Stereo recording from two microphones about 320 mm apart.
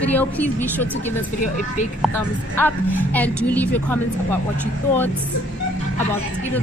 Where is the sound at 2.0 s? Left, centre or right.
Centre.